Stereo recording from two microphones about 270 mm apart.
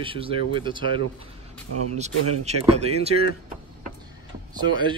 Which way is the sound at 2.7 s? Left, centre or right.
Right.